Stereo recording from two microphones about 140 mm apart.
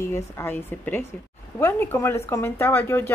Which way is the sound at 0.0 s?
20° left (ahead or behind).